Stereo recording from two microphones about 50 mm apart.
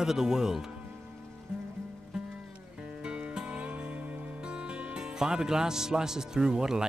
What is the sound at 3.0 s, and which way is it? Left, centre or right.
Music, right.